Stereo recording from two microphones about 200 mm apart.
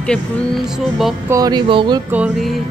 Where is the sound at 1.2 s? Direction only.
15° right (ahead or behind).